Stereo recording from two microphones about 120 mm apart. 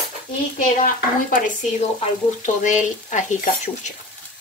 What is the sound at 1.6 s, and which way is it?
Speech, 90° left.